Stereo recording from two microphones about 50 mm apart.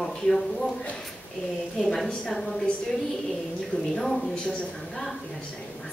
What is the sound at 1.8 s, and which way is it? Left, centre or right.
Speech, centre.